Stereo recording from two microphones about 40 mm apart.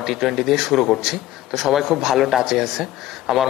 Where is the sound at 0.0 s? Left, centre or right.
Centre.